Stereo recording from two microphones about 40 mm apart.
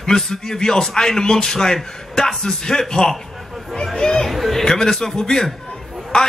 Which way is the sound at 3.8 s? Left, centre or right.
Centre.